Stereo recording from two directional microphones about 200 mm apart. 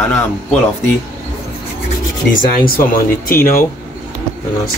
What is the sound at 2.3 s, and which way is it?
Speech, 45° left (ahead or behind).